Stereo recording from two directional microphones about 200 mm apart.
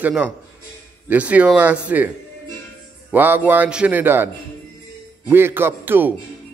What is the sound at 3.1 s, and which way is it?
Speech, 10° right (ahead or behind).